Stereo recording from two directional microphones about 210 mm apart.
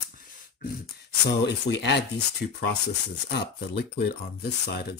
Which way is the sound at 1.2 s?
55° left (ahead or behind).